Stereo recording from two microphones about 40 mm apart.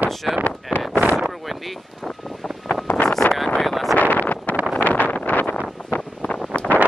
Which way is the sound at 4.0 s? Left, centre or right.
Left.